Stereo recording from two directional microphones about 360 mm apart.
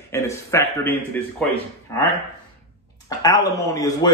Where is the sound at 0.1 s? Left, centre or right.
Centre.